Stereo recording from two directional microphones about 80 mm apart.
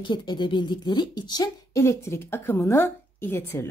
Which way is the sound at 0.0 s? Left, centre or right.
Left.